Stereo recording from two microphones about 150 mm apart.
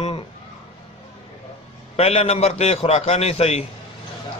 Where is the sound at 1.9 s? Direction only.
45° left (ahead or behind).